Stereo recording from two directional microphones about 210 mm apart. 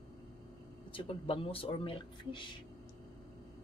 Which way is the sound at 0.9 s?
25° left (ahead or behind).